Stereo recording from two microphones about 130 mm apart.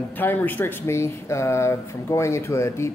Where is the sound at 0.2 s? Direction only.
15° left (ahead or behind).